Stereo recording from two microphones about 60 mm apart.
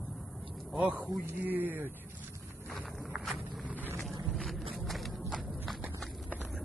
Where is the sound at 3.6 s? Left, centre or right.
Right.